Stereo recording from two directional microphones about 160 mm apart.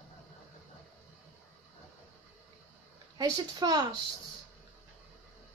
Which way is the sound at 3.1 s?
25° right (ahead or behind).